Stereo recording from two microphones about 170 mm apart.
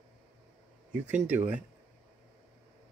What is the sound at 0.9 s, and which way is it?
Speech, 10° right (ahead or behind).